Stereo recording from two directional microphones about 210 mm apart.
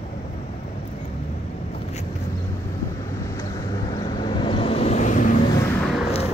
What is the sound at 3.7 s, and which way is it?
Vehicle, 25° left (ahead or behind).